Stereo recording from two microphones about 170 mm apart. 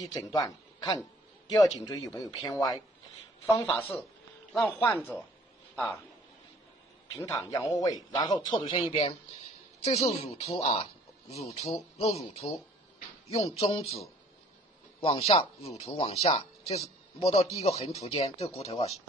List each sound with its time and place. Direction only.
0.0 s a man's voice: 20° left (ahead or behind)
4.5 s a man's voice: 10° left (ahead or behind)
7.2 s a man's voice: 20° left (ahead or behind); by 14.0 s 35° left (ahead or behind)
15.0 s speech: 35° left (ahead or behind)